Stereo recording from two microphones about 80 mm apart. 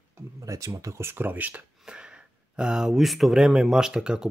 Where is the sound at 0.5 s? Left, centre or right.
Right.